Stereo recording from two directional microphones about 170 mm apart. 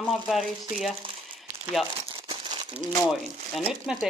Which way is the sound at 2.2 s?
25° right (ahead or behind).